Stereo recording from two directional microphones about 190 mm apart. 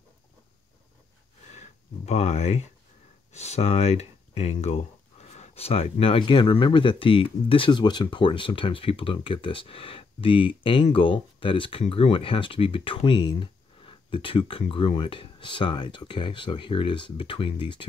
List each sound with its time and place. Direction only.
1.5 s speech: 35° left (ahead or behind)